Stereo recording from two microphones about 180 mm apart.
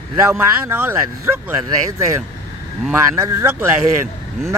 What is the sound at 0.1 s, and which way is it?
Speech, 15° right (ahead or behind).